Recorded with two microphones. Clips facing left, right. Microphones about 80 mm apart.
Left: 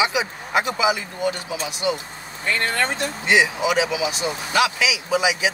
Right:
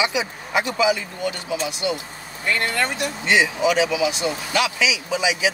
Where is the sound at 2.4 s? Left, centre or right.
Left.